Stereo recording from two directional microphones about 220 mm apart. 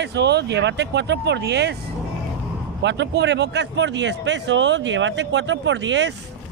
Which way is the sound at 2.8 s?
50° right (ahead or behind).